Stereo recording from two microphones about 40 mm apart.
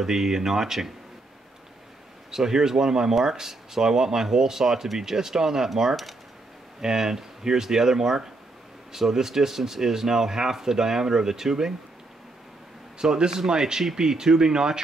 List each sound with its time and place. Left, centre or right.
0.0 s speech: centre
2.3 s speech: centre
6.8 s speech: centre
13.0 s speech: centre